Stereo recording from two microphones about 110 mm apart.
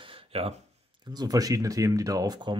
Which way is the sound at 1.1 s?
35° right (ahead or behind).